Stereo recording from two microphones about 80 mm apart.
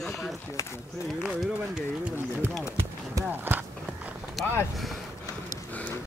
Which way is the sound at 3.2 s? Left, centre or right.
Right.